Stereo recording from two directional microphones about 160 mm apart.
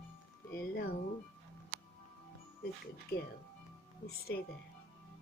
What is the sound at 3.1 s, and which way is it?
Speech, 70° left (ahead or behind).